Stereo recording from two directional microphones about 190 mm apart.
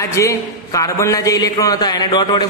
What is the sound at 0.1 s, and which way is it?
A man's voice, 15° left (ahead or behind).